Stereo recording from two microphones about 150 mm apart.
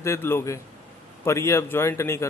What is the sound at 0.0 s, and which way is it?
A man's voice, 15° left (ahead or behind).